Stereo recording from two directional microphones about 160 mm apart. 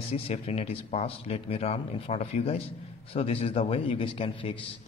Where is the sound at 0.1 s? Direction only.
40° left (ahead or behind).